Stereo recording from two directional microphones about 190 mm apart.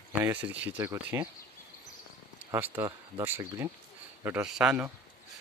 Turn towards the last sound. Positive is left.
turn(degrees=-5)  # may be behind; listen again after turning